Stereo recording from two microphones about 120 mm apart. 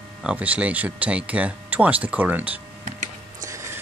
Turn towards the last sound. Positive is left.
turn(degrees=-25)  # may be behind; listen again after turning